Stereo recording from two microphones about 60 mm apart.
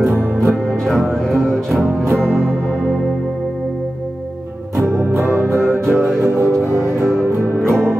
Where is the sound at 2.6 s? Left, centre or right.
Right.